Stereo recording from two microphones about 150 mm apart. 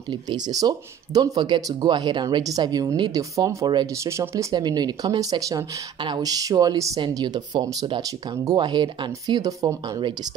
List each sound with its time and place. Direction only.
0.1 s speech: 25° right (ahead or behind)